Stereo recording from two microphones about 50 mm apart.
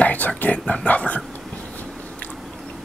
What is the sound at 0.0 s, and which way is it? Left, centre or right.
Speech, left.